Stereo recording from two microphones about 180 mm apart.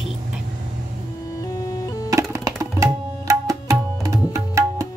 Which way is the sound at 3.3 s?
15° right (ahead or behind).